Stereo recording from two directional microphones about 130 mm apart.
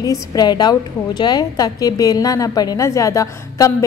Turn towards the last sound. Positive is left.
turn(degrees=25)  # may be behind; listen again after turning